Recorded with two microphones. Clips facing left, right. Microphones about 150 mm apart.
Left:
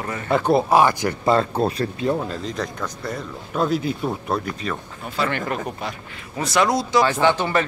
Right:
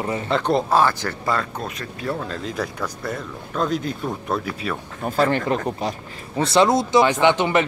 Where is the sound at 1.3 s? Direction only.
30° left (ahead or behind).